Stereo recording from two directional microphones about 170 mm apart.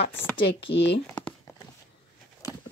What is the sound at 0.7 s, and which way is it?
Speech, 90° left.